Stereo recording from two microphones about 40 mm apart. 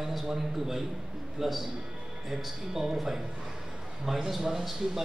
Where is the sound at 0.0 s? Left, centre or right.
Centre.